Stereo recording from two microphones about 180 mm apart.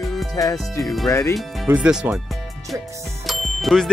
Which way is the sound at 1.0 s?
15° left (ahead or behind).